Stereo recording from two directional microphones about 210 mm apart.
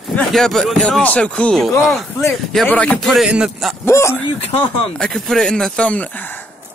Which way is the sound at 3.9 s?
15° left (ahead or behind).